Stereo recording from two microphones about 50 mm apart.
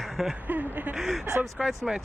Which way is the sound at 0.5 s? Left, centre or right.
Right.